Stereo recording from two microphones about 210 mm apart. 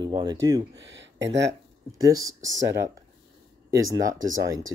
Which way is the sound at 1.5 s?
15° right (ahead or behind).